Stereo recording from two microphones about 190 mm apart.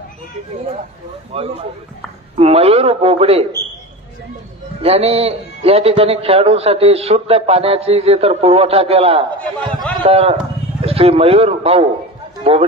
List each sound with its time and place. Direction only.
1.3 s a man's voice: 30° right (ahead or behind)
4.8 s a man's voice: 30° right (ahead or behind)